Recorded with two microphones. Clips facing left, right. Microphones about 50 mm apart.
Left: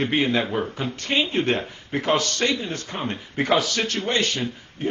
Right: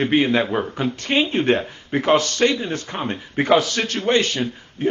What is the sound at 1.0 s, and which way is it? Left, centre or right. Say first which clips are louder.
A man's voice: right 3 dB; right.